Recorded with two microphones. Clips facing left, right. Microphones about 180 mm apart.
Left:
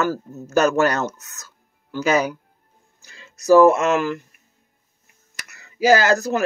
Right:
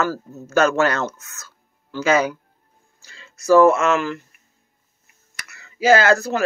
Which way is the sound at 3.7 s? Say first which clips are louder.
Even; 40° left (ahead or behind).